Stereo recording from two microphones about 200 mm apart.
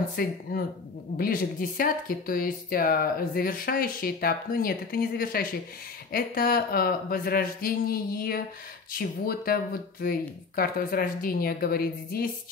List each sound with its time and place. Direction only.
0.1 s speech: 50° left (ahead or behind)